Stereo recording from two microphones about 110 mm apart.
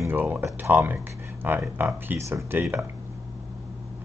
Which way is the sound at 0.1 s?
15° right (ahead or behind).